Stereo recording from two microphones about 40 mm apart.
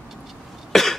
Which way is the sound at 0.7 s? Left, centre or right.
Centre.